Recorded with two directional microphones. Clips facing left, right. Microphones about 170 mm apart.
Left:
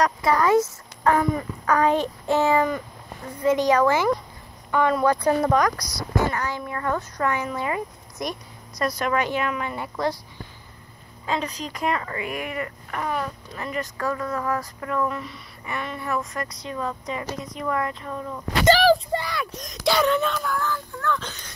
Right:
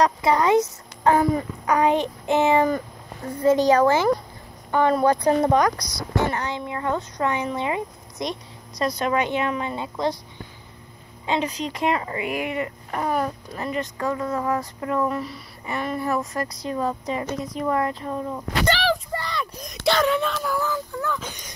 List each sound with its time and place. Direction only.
0.0 s speech: 25° right (ahead or behind)
1.7 s speech: 15° right (ahead or behind)
3.4 s a woman's voice: 30° right (ahead or behind)
11.2 s speech: 25° right (ahead or behind)
18.7 s a sound: 45° left (ahead or behind)
19.1 s speech: 5° left (ahead or behind); by 21.5 s 10° right (ahead or behind)